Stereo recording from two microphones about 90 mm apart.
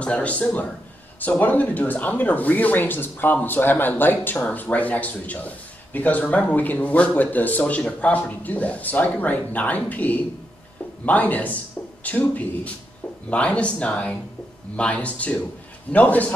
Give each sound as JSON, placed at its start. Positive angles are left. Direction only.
{"t": 0.0, "sound": "speech", "side_deg": 15}